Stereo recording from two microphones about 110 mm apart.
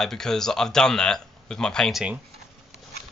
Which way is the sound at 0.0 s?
5° left (ahead or behind).